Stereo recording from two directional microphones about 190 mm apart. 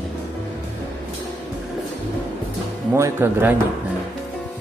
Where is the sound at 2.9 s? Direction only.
15° right (ahead or behind).